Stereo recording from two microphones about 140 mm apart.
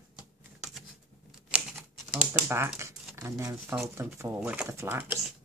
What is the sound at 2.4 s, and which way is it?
Speech, 20° right (ahead or behind).